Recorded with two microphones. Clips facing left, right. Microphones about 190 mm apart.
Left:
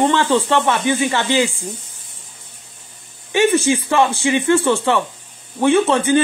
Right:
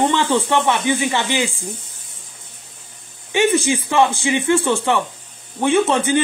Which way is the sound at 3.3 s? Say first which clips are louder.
Left 2 dB; 15° right (ahead or behind).